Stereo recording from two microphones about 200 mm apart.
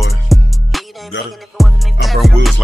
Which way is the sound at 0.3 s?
Centre (ahead or behind).